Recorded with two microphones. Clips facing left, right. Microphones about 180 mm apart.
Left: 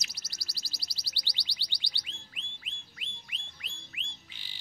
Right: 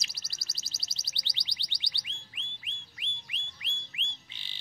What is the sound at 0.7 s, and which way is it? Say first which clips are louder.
Music: left 1 dB; 20° right (ahead or behind).